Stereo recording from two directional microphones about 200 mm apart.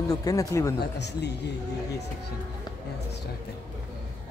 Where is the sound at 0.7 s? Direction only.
60° left (ahead or behind).